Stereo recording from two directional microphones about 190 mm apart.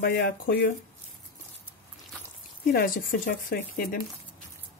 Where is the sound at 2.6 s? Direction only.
50° left (ahead or behind).